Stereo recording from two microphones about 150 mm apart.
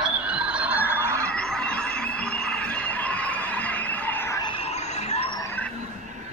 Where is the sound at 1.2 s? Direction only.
5° left (ahead or behind).